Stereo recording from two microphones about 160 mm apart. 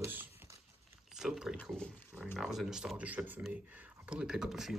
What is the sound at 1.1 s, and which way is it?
Speech, 5° right (ahead or behind).